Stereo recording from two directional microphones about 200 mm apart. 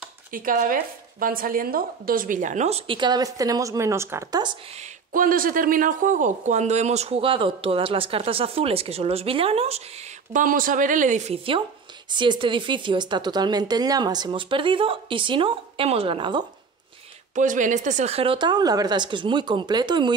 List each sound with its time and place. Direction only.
0.3 s speech: 45° right (ahead or behind); by 4.6 s 20° right (ahead or behind)
4.7 s speech: 40° right (ahead or behind); by 16.4 s 25° right (ahead or behind)
17.4 s speech: 40° right (ahead or behind); by 20.2 s 20° right (ahead or behind)